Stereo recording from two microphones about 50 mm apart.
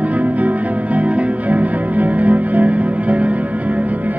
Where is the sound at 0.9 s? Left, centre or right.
Right.